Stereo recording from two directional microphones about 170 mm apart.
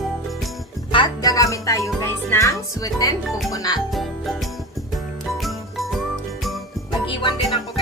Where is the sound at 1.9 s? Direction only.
15° left (ahead or behind).